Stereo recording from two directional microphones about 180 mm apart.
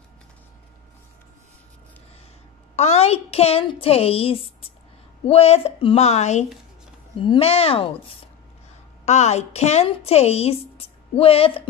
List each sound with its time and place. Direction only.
2.7 s a woman's voice: 35° left (ahead or behind)